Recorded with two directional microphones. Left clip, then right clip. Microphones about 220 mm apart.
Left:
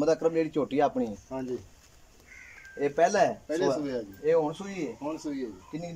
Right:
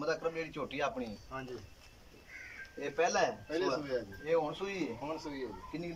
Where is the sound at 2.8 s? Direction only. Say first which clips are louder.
Left 8 dB; 35° left (ahead or behind).